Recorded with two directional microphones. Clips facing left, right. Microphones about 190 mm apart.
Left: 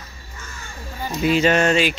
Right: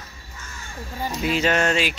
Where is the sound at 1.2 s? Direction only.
Centre (ahead or behind).